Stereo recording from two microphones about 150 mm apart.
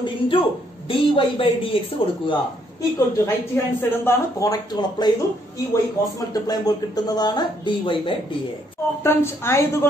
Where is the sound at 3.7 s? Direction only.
20° left (ahead or behind).